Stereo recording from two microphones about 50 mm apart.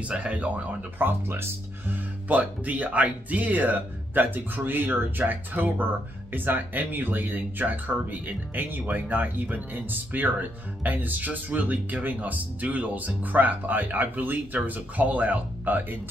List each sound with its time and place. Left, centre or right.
0.1 s speech: right
0.9 s speech: right